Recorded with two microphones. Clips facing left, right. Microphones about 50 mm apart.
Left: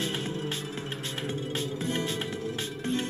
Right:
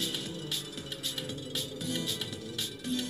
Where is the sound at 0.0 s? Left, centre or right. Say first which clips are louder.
Left 5 dB; left.